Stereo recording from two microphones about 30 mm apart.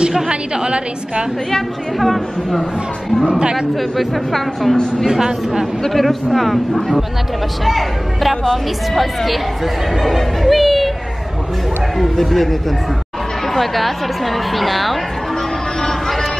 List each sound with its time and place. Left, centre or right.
0.7 s a woman's voice: right
2.0 s speech: centre
3.9 s speech: centre
5.0 s speech: centre
5.9 s speech: centre
12.2 s speech: centre